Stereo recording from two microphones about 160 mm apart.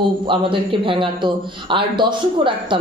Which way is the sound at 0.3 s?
30° right (ahead or behind).